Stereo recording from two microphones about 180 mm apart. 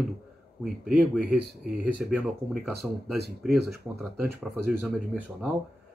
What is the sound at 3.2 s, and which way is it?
Speech, 60° right (ahead or behind).